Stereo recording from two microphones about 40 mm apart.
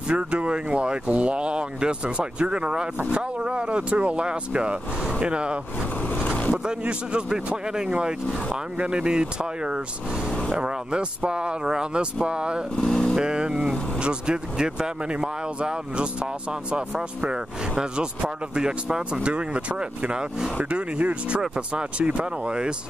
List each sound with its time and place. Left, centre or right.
0.1 s speech: right
6.0 s vehicle: left
6.9 s speech: right
8.7 s speech: right
12.7 s speech: centre
13.2 s speech: right
17.7 s speech: right
19.1 s speech: right
20.1 s speech: centre
20.7 s speech: right